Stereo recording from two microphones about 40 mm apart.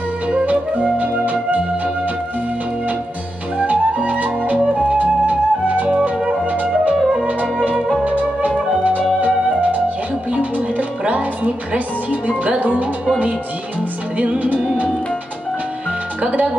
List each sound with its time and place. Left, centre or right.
0.3 s music: right
3.5 s flute: right
6.5 s music: right
8.0 s music: right
14.4 s music: right
16.2 s music: right